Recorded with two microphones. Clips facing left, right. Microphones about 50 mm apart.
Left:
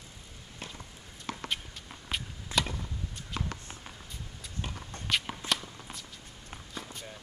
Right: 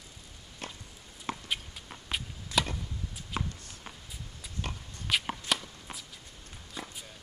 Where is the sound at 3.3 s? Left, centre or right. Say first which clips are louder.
Right 2 dB; right.